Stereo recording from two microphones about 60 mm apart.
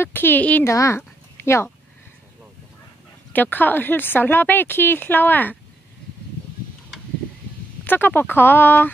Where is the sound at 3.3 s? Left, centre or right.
Left.